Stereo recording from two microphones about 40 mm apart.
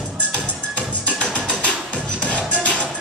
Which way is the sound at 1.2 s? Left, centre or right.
Left.